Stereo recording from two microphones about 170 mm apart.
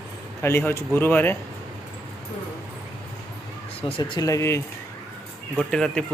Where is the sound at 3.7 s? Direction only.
30° left (ahead or behind).